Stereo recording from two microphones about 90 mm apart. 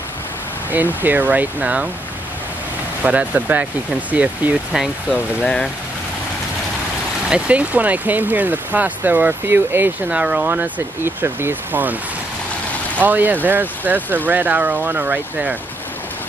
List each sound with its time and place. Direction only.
0.7 s speech: 20° right (ahead or behind)
3.0 s speech: 15° right (ahead or behind)
5.4 s speech: 5° left (ahead or behind)
7.2 s speech: 10° right (ahead or behind)
10.0 s speech: 10° right (ahead or behind)
13.0 s speech: 20° right (ahead or behind)